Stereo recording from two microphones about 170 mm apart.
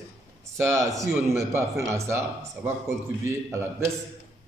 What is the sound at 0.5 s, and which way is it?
A man's voice, 15° right (ahead or behind).